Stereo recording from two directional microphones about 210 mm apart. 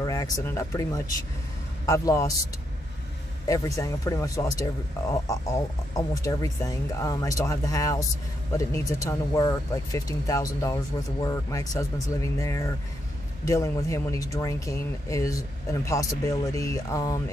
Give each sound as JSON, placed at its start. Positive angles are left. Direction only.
{"t": 0.0, "sound": "speech", "side_deg": 15}
{"t": 3.4, "sound": "speech", "side_deg": 15}